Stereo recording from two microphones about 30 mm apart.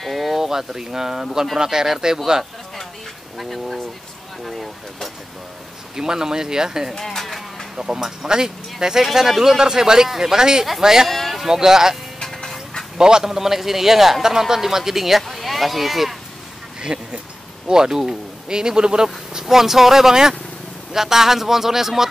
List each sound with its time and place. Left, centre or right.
0.0 s a sound: centre
0.4 s speech: centre
3.3 s a sound: centre
4.5 s speech: centre
5.9 s speech: right
7.0 s speech: centre
7.7 s speech: centre
9.6 s speech: right
11.1 s a sound: centre
11.4 s a man's voice: centre
13.3 s speech: centre
16.8 s speech: right
17.6 s speech: right
19.4 s speech: centre